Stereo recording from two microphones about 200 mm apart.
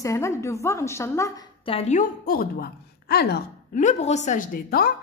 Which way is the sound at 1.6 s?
30° left (ahead or behind).